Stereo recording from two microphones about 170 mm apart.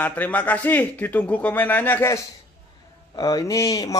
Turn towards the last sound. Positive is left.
turn(degrees=20)  # may be behind; listen again after turning